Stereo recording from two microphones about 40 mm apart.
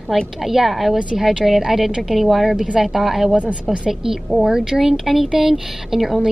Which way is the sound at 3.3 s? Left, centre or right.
Right.